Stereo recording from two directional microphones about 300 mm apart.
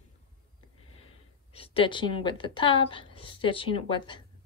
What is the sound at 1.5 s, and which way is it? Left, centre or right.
A woman's voice, centre.